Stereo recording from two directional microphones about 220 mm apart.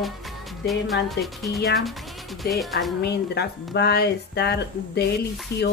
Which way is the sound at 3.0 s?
50° left (ahead or behind).